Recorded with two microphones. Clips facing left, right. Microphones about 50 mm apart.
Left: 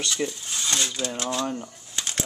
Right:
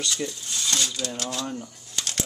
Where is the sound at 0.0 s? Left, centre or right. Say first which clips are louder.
Left 2 dB; centre.